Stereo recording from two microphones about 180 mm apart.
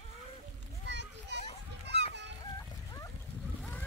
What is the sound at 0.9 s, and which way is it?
Children playing, 75° right (ahead or behind).